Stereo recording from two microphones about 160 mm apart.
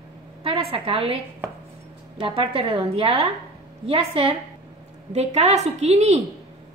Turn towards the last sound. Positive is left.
turn(degrees=-45)  # may be behind; listen again after turning